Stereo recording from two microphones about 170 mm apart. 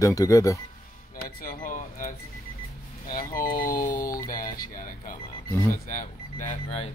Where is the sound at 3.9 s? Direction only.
20° left (ahead or behind).